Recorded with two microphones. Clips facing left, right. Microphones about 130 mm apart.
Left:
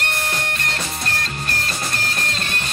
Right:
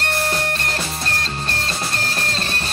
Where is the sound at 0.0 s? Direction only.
30° right (ahead or behind).